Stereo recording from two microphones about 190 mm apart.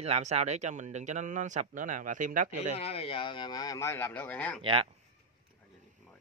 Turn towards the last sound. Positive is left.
turn(degrees=-30)  # may be behind; listen again after turning